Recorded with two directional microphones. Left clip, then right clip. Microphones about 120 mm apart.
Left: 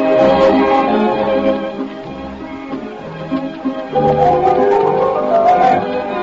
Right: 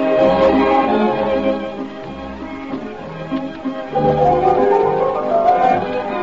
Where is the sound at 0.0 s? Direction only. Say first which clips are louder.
Left 3 dB; 35° right (ahead or behind).